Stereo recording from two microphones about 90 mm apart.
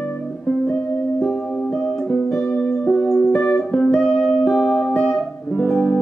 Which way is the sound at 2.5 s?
10° left (ahead or behind).